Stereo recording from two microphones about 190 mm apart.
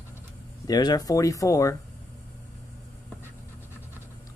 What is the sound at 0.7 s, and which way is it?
Speech, 20° left (ahead or behind).